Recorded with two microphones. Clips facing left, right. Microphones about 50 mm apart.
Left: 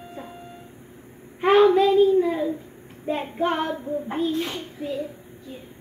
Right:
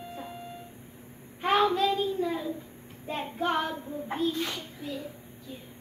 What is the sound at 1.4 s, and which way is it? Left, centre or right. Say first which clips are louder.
Child singing: left 8 dB; left.